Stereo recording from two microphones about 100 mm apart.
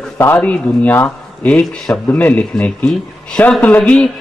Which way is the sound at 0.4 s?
15° left (ahead or behind).